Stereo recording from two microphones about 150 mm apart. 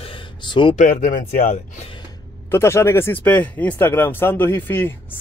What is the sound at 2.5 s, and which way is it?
Speech, 15° left (ahead or behind).